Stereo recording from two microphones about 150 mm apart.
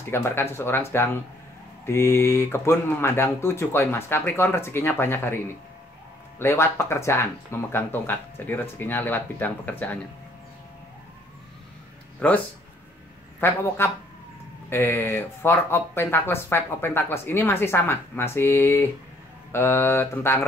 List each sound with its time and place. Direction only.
0.1 s speech: 15° left (ahead or behind)
12.2 s speech: 10° left (ahead or behind)
13.4 s speech: 15° left (ahead or behind)